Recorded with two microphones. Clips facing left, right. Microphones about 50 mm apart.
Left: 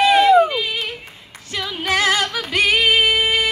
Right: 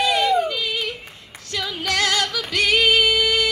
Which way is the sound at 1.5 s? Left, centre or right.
Left.